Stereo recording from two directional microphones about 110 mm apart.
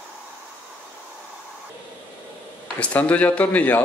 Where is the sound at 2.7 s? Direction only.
10° left (ahead or behind).